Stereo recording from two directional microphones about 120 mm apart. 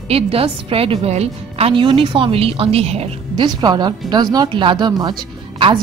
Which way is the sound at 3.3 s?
40° right (ahead or behind).